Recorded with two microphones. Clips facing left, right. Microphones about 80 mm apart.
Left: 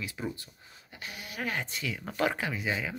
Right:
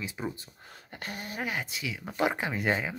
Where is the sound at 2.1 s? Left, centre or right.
Centre.